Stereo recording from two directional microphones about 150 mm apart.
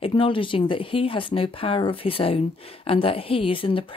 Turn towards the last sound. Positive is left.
turn(degrees=35)  # may be behind; listen again after turning